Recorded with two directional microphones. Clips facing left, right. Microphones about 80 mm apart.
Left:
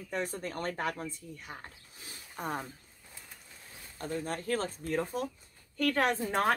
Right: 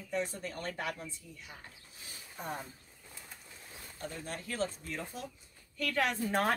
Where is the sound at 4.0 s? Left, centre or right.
Left.